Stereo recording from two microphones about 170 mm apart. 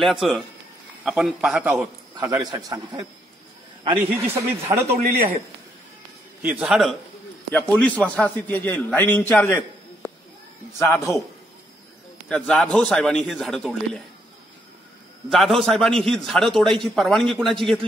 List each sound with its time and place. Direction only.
0.0 s a man's voice: centre (ahead or behind)
2.1 s a man's voice: 20° right (ahead or behind)
6.4 s a man's voice: 5° right (ahead or behind); by 11.2 s 15° left (ahead or behind)
12.3 s a man's voice: 5° left (ahead or behind)
15.3 s a man's voice: centre (ahead or behind)